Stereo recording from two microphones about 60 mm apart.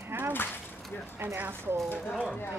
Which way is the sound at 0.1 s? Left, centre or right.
Right.